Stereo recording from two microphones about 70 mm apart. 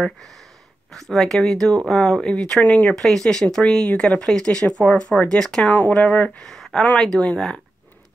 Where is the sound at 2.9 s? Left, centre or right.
Centre.